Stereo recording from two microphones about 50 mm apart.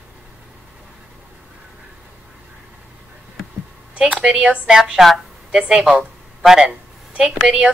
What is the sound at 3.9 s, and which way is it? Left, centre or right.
Speech, centre.